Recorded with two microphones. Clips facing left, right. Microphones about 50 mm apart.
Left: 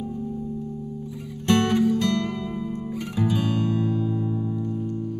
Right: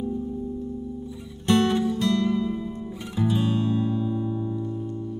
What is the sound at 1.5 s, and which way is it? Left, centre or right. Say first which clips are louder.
Music: left 1 dB; left.